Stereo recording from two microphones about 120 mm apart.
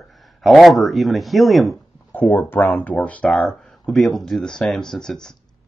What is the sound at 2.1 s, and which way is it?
Speech, 15° left (ahead or behind).